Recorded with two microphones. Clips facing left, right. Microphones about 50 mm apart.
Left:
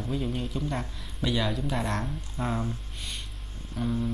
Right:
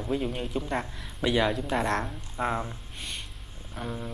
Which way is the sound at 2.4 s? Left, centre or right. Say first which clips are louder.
Right 2 dB; right.